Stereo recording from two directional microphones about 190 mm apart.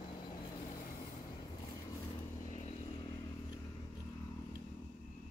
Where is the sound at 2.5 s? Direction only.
35° left (ahead or behind).